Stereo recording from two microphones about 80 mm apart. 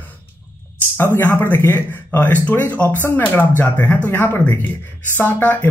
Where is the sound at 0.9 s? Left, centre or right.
Left.